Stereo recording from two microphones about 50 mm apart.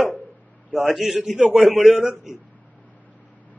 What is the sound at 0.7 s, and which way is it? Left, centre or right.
A man's voice, centre.